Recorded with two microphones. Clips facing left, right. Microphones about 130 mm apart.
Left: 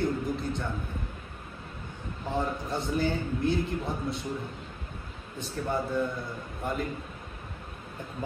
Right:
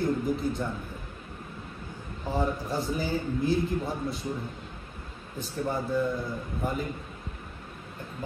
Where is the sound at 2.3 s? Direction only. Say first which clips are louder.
Right 2 dB; centre (ahead or behind).